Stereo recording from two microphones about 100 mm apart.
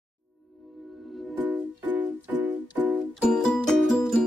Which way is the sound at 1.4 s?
15° right (ahead or behind).